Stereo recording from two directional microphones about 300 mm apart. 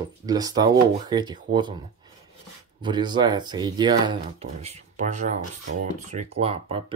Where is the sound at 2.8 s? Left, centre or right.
Centre.